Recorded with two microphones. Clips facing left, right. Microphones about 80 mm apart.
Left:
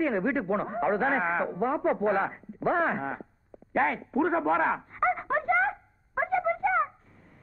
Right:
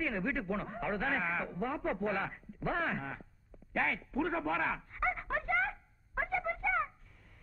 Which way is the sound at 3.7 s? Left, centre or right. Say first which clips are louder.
Left 8 dB; left.